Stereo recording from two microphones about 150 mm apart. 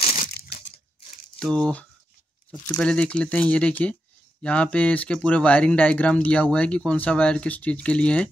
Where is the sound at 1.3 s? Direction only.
5° left (ahead or behind).